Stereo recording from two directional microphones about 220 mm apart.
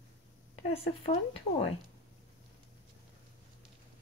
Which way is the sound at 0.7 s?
25° left (ahead or behind).